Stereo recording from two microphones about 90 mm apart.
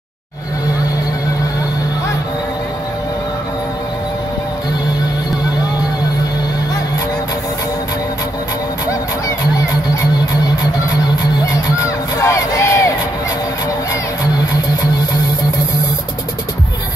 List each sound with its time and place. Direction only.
11.5 s crowd: 35° left (ahead or behind)